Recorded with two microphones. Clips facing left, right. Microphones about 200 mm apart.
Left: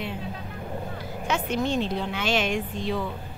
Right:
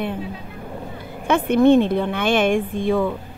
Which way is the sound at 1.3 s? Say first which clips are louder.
Right 12 dB; 55° right (ahead or behind).